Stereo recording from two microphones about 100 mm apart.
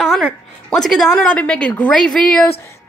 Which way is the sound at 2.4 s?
25° left (ahead or behind).